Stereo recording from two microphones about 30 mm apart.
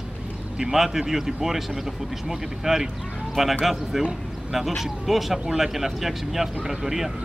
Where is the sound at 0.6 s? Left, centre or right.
Centre.